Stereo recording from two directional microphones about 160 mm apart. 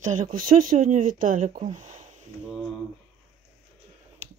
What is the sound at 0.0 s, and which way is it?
Speech, 50° right (ahead or behind).